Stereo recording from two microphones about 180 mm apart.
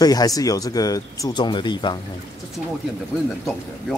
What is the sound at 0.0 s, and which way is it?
Speech, 20° left (ahead or behind).